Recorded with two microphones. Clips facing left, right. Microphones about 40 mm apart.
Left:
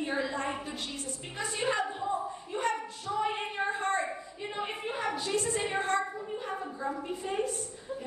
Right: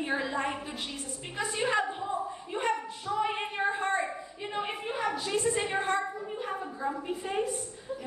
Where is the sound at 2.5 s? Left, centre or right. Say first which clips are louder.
Right 1 dB; right; by 5.3 s centre.